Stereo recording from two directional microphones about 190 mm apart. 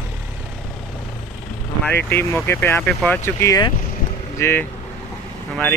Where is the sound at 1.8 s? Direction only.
10° left (ahead or behind).